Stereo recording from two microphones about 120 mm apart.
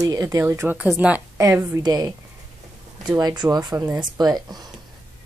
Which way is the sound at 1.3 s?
25° right (ahead or behind).